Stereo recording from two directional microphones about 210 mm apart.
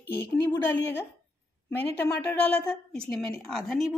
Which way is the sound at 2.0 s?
10° left (ahead or behind).